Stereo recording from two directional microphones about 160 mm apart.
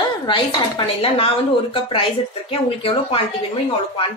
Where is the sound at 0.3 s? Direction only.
35° left (ahead or behind).